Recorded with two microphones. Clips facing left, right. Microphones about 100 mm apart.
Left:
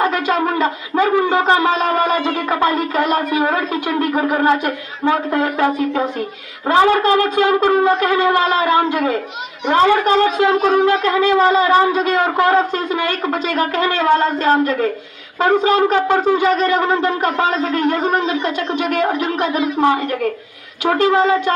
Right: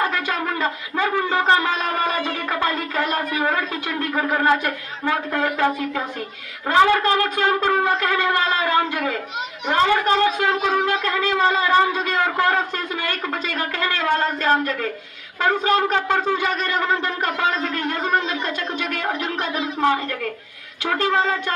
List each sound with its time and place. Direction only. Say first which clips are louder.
0.0 s a sound: left 6 dB; 20° left (ahead or behind)
3.4 s a man's voice: left 5 dB; 15° left (ahead or behind)
15.4 s speech: left 5 dB; 15° left (ahead or behind)
16.7 s a man's voice: left 6 dB; 25° left (ahead or behind)
19.1 s speech: left 7 dB; 10° left (ahead or behind)